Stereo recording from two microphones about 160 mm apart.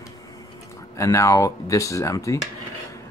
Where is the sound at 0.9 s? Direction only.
20° left (ahead or behind).